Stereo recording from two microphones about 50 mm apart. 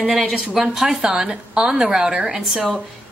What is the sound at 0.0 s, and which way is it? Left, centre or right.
A woman's voice, centre.